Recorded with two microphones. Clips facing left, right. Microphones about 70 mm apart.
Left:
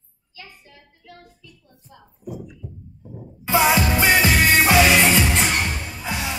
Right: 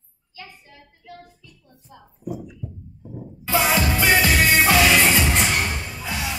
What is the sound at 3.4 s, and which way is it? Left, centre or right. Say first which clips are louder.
Music: left 3 dB; left.